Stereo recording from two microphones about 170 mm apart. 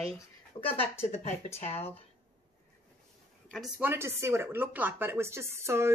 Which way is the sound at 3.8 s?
15° right (ahead or behind).